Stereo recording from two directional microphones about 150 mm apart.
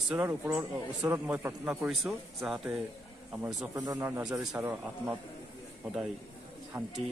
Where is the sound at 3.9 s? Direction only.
15° right (ahead or behind).